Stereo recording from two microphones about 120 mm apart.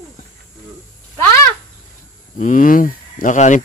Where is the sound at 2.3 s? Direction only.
90° left.